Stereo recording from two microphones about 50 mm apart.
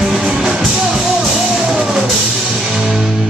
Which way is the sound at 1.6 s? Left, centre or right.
Centre.